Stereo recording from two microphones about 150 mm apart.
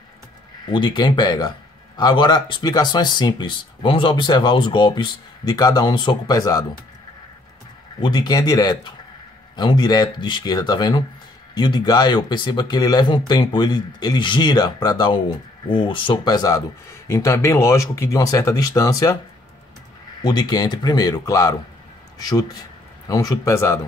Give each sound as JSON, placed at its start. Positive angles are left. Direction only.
{"t": 0.7, "sound": "speech", "side_deg": 30}
{"t": 8.0, "sound": "speech", "side_deg": 25}
{"t": 20.2, "sound": "speech", "side_deg": 25}